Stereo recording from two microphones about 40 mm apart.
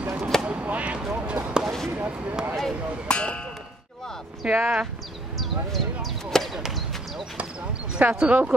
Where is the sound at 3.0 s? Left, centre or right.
Left.